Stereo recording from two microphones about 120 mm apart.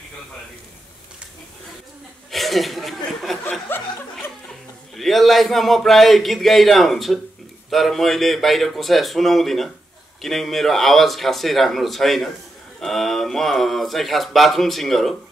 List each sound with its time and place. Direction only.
2.3 s chuckle: centre (ahead or behind)
3.7 s chuckle: 20° left (ahead or behind)
4.9 s speech: centre (ahead or behind)